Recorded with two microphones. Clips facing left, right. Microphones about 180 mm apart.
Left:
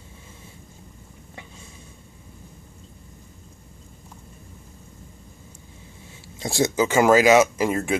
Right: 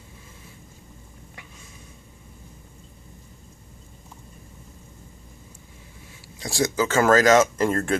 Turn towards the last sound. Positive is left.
turn(degrees=10)  # may be behind; listen again after turning